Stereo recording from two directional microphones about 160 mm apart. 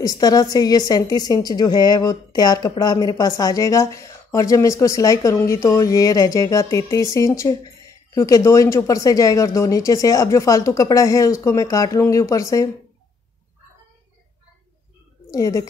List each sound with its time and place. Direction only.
0.0 s a woman's voice: 25° left (ahead or behind)
15.3 s a woman's voice: 20° left (ahead or behind)